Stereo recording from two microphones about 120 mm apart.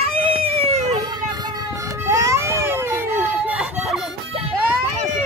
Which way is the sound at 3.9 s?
Centre (ahead or behind).